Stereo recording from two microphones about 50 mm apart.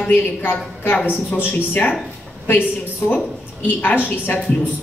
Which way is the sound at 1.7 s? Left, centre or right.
Left.